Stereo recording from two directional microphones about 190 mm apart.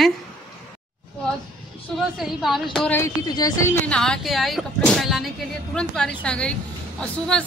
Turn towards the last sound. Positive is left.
turn(degrees=5)  # may be behind; listen again after turning